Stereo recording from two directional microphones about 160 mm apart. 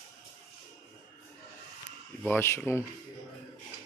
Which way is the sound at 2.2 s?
15° left (ahead or behind).